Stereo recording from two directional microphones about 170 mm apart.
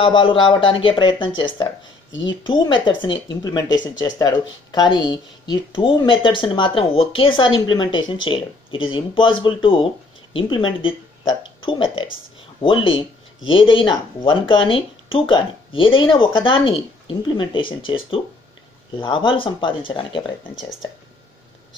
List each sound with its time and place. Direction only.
0.0 s speech: 30° left (ahead or behind)
3.6 s speech: 90° left
4.0 s speech: 25° left (ahead or behind)